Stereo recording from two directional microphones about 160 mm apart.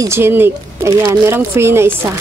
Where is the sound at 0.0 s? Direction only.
15° right (ahead or behind).